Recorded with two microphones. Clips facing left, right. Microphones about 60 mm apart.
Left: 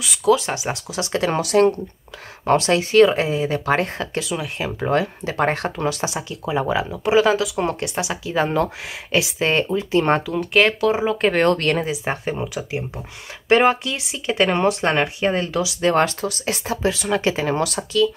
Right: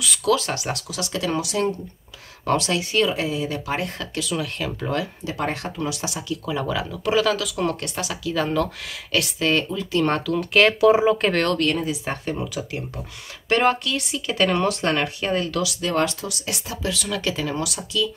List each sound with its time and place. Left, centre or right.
0.2 s speech: centre
0.5 s speech: centre
3.6 s speech: left
4.0 s speech: left
4.3 s speech: centre
10.4 s speech: centre
11.5 s speech: left
11.9 s speech: left
14.2 s speech: left